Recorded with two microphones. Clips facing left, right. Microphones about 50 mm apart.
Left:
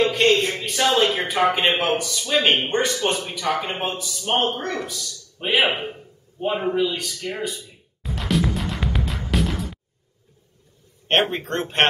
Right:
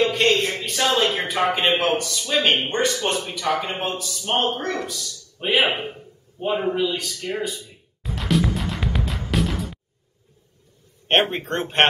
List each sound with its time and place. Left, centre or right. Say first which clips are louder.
0.1 s a sound: left 1 dB; centre
1.2 s speech: left 1 dB; centre
6.8 s music: left 1 dB; centre
11.1 s speech: right 1 dB; centre